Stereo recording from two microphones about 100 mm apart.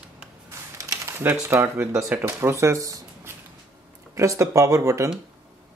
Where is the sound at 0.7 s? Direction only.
30° right (ahead or behind).